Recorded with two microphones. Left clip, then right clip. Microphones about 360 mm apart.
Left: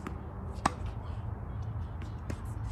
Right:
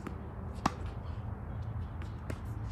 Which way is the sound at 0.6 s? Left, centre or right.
Left.